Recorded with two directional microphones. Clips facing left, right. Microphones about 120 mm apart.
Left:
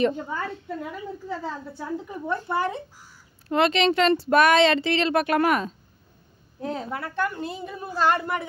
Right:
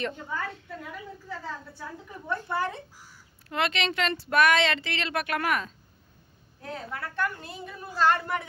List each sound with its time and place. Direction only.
0.0 s speech: 25° left (ahead or behind)
3.4 s speech: 30° left (ahead or behind); by 8.5 s 10° left (ahead or behind)